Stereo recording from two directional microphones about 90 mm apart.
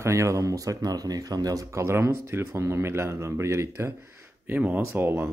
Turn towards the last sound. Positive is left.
turn(degrees=-25)  # may be behind; listen again after turning